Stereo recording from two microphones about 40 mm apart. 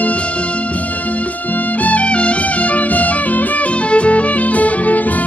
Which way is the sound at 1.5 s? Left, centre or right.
Left.